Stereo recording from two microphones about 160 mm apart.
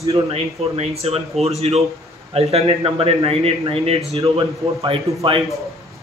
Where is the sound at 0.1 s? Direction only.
40° right (ahead or behind).